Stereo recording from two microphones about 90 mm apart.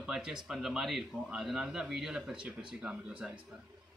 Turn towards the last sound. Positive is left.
turn(degrees=-10)  # may be behind; listen again after turning